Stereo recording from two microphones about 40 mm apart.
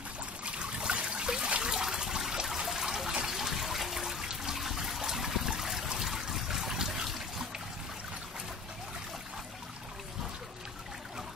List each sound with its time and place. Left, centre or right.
0.5 s trickle: right
1.6 s water: centre
2.4 s trickle: centre